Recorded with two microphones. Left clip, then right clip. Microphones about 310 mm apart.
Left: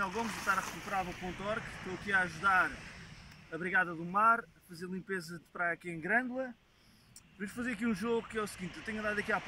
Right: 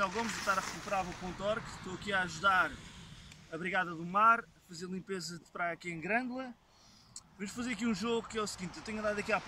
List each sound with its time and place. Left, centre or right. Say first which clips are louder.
0.0 s speech: right 1 dB; centre